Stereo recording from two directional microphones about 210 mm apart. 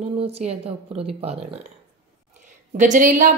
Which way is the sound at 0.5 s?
30° right (ahead or behind).